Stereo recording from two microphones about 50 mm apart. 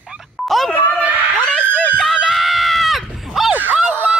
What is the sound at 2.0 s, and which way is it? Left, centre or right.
Screaming, centre.